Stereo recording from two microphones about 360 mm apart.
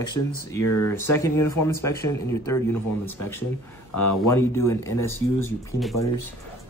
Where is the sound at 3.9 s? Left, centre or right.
Left.